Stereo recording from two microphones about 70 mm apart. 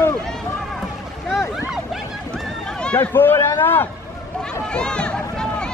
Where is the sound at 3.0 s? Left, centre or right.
Left.